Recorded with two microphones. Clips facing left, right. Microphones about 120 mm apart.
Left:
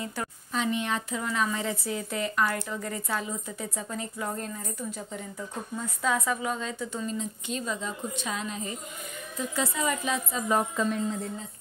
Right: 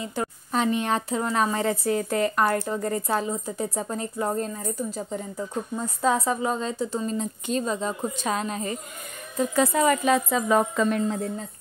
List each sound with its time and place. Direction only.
0.0 s speech: 20° right (ahead or behind)
0.5 s a woman's voice: 45° right (ahead or behind); by 11.2 s 60° right (ahead or behind)